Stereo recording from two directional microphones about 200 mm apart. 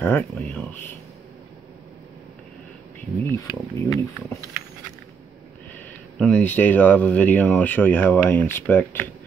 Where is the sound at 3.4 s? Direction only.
15° left (ahead or behind).